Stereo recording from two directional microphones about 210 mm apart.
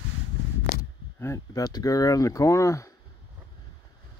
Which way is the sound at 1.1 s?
15° left (ahead or behind).